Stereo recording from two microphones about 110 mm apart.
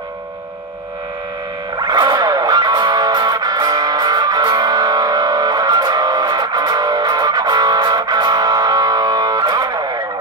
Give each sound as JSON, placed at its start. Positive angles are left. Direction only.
{"t": 1.8, "sound": "music", "side_deg": -40}